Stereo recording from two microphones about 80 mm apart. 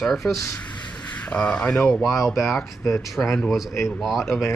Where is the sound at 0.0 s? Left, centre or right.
Centre.